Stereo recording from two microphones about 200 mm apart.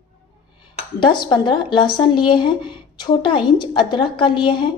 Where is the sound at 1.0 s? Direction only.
20° left (ahead or behind).